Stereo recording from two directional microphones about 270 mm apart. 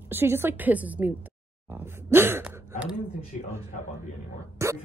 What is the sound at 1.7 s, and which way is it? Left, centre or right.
Speech, centre.